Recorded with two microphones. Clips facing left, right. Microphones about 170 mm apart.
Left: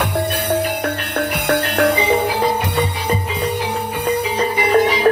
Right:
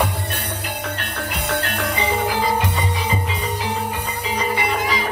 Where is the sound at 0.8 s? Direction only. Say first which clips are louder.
Left 7 dB; 65° left (ahead or behind).